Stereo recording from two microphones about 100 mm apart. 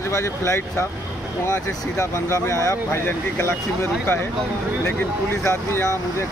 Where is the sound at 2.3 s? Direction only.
30° left (ahead or behind).